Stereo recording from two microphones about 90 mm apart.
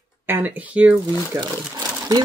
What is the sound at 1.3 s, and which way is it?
Speech, 40° right (ahead or behind).